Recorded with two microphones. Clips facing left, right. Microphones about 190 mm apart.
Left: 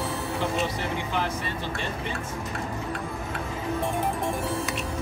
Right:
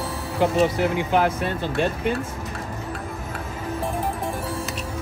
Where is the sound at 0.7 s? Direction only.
60° right (ahead or behind).